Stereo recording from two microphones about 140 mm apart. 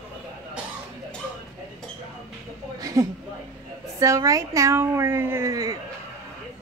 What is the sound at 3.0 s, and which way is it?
A woman's voice, 20° right (ahead or behind).